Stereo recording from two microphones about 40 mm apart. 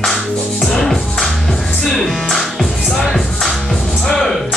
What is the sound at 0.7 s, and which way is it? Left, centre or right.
Music, centre.